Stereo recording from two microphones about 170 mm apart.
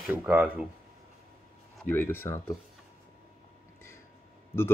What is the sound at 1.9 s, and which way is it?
Speech, 15° left (ahead or behind).